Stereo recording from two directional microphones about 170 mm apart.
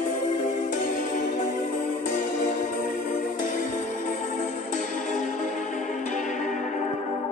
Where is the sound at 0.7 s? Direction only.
50° left (ahead or behind).